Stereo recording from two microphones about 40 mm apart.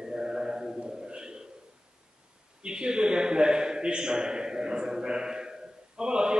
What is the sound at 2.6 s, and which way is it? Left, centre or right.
A man's voice, right.